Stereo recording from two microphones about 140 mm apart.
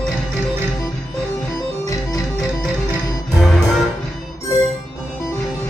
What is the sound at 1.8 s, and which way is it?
Organ, 25° left (ahead or behind).